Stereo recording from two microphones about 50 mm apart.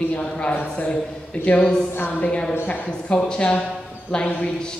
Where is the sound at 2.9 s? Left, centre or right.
Centre.